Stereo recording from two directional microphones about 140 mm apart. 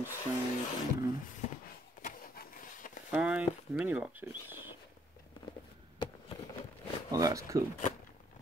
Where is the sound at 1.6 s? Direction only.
90° left; by 2.9 s 75° left (ahead or behind).